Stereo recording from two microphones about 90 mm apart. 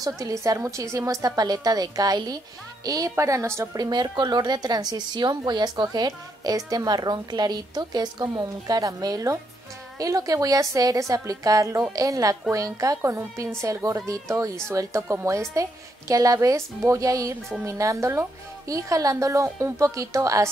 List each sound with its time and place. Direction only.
0.0 s a woman's voice: 40° right (ahead or behind)
3.7 s a woman's voice: 50° right (ahead or behind); by 20.4 s 35° right (ahead or behind)